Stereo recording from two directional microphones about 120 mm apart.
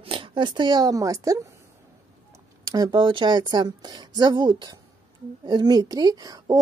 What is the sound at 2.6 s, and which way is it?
A woman's voice, 35° right (ahead or behind).